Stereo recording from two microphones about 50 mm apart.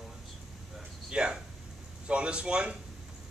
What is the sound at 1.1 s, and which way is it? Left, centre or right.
A man's voice, centre.